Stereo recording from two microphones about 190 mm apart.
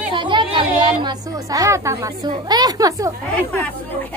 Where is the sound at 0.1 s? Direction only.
25° right (ahead or behind).